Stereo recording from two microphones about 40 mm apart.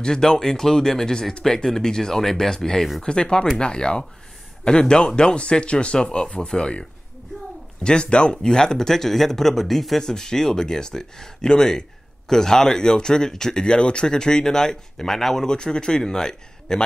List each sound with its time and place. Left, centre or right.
0.0 s speech: centre
10.0 s speech: centre